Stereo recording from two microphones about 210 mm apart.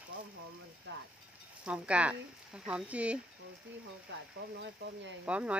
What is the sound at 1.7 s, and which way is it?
Speech, 5° right (ahead or behind).